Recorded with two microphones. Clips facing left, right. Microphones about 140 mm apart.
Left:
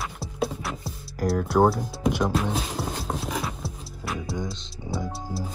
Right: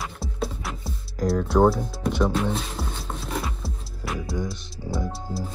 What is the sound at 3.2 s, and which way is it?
Music, centre (ahead or behind).